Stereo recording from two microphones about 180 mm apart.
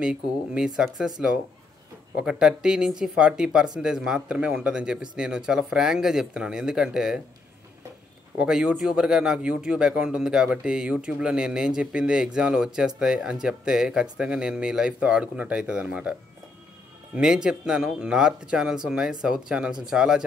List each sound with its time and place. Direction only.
0.0 s speech: 5° right (ahead or behind)
8.4 s speech: 5° right (ahead or behind)